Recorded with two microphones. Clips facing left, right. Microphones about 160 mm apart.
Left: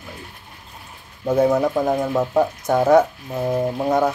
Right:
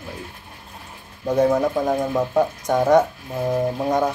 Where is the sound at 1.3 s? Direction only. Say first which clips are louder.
Left 1 dB; 10° left (ahead or behind).